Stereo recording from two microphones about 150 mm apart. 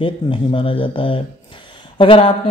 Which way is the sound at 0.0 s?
35° left (ahead or behind).